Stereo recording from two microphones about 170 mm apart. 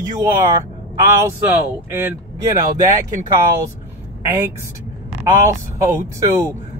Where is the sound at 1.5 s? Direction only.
10° right (ahead or behind).